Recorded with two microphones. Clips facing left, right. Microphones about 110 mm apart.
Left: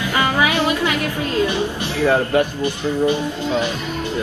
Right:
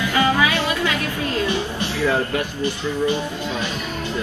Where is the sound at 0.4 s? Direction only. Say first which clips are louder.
Left 3 dB; 20° left (ahead or behind).